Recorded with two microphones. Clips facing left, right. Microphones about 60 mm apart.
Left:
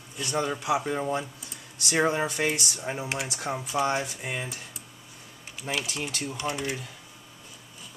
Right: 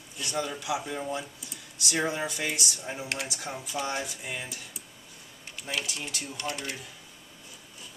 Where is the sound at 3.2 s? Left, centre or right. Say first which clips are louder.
Left 4 dB; left.